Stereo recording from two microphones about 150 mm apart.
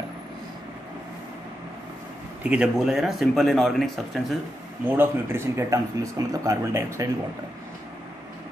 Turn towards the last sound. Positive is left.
turn(degrees=-20)  # may be behind; listen again after turning